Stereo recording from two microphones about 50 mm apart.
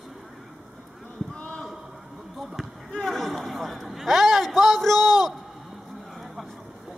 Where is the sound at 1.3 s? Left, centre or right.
Centre.